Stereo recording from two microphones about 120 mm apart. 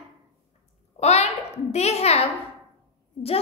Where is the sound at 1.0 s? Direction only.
65° left (ahead or behind).